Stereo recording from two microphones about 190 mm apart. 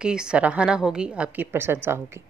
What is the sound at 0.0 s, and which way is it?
A woman's voice, 5° right (ahead or behind).